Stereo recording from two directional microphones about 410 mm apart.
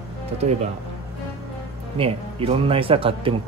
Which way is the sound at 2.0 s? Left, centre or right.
Centre.